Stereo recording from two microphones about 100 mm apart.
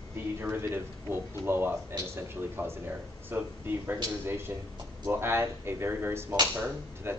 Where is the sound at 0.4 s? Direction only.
25° right (ahead or behind).